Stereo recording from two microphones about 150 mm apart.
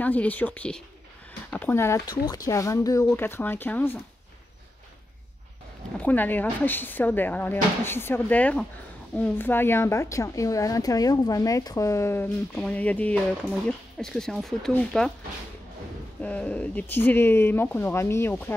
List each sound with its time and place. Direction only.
0.0 s speech: 10° left (ahead or behind)
2.0 s a woman's voice: 25° left (ahead or behind)
5.9 s a woman's voice: 10° left (ahead or behind)
16.2 s speech: 10° left (ahead or behind)